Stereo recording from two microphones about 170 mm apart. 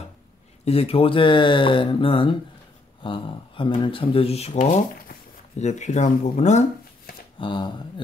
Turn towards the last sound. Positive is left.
turn(degrees=30)  # may be behind; listen again after turning